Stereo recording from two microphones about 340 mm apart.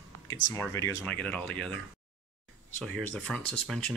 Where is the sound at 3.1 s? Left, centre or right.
Centre.